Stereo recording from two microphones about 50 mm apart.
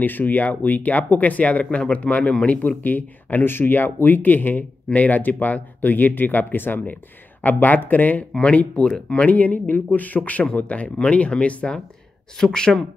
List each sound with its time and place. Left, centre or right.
0.0 s speech: left
12.4 s speech: centre